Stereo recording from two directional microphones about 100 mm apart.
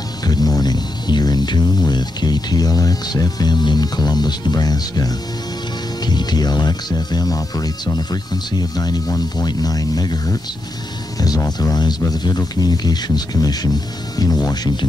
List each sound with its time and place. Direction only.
0.2 s speech: 40° left (ahead or behind)